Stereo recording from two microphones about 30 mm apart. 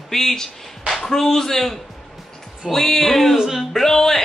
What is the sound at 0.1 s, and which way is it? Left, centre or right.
A man's voice, centre.